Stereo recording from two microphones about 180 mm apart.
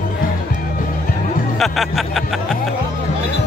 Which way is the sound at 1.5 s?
Centre (ahead or behind).